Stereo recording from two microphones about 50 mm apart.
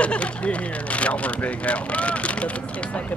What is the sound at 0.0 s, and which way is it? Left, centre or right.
Speech, left.